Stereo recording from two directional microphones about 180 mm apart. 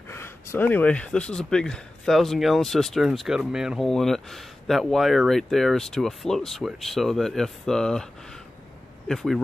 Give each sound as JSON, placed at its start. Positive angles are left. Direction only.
{"t": 0.1, "sound": "speech", "side_deg": 15}